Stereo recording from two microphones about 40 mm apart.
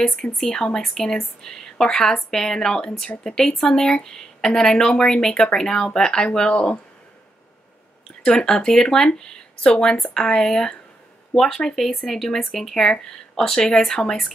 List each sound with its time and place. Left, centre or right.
0.0 s a woman's voice: centre
8.2 s a woman's voice: centre
13.0 s a woman's voice: centre